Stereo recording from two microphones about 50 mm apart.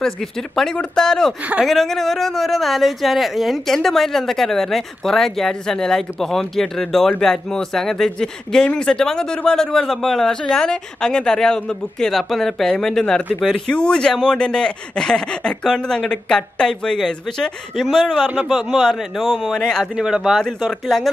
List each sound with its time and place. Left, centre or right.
0.7 s speech: centre
18.5 s speech: centre
18.8 s speech: centre
20.0 s speech: centre
20.3 s speech: centre